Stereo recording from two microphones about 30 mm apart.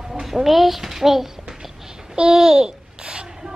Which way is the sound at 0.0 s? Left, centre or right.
Centre.